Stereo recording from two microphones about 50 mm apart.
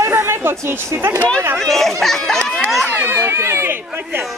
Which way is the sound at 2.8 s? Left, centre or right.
Right.